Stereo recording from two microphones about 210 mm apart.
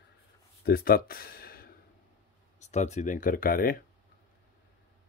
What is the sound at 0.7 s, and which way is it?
Speech, 45° left (ahead or behind).